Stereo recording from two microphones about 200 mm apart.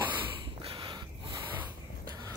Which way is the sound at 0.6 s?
25° right (ahead or behind).